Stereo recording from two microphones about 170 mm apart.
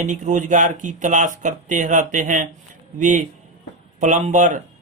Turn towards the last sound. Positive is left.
turn(degrees=-45)  # may be behind; listen again after turning